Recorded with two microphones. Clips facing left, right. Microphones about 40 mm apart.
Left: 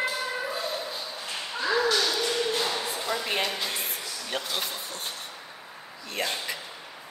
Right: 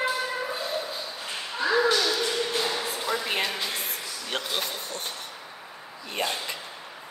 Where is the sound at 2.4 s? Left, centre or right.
Centre.